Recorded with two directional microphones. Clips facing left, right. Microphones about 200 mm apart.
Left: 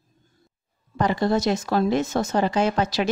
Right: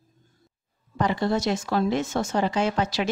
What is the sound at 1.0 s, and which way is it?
Speech, 40° left (ahead or behind).